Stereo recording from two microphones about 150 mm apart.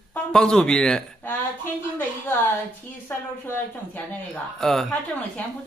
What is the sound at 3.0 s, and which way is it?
Speech, 15° left (ahead or behind).